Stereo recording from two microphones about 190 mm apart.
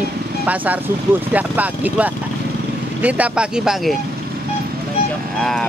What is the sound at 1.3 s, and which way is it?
Speech, 10° right (ahead or behind).